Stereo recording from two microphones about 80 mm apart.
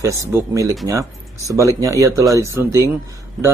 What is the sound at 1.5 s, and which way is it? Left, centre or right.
Speech, right.